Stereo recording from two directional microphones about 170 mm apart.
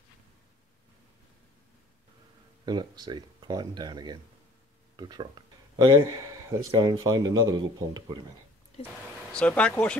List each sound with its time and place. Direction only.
2.6 s speech: 25° right (ahead or behind)
9.3 s speech: 5° left (ahead or behind)